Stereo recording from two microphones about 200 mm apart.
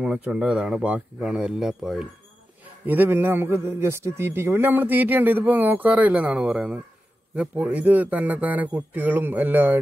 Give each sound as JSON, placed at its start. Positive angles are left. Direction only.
{"t": 0.0, "sound": "a man's voice", "side_deg": -5}